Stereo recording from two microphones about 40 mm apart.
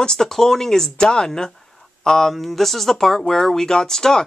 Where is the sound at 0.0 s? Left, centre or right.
Centre.